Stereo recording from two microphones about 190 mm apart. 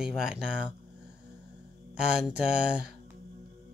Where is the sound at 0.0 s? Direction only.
5° right (ahead or behind).